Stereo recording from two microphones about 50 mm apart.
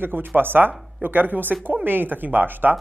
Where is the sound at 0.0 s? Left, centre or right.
Right.